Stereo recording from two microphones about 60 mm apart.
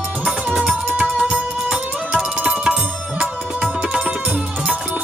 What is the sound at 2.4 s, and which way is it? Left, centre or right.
Music, centre.